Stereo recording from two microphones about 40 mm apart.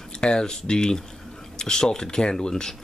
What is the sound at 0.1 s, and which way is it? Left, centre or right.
Speech, centre.